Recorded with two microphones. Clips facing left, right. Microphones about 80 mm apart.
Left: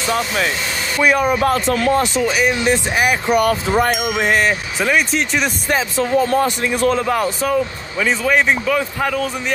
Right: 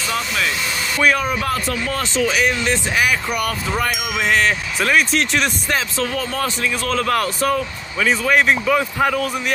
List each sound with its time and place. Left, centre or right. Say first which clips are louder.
0.0 s speech: left 3 dB; left
0.9 s speech: left 3 dB; centre
1.4 s speech: left 6 dB; left
2.1 s speech: left 1 dB; centre
3.0 s a man's voice: left 5 dB; left
4.0 s speech: left 2 dB; centre
5.7 s a man's voice: left 4 dB; centre
7.2 s speech: left 2 dB; centre